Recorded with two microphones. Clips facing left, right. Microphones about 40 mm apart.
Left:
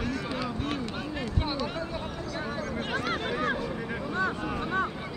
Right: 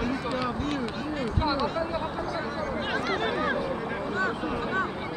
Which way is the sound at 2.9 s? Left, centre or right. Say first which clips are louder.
Right 2 dB; centre.